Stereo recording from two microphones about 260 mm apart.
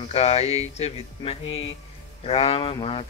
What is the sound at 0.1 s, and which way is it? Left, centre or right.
Mantra, left.